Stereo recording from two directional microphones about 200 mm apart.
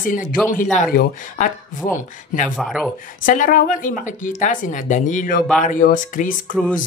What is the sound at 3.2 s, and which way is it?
Speech, 45° left (ahead or behind).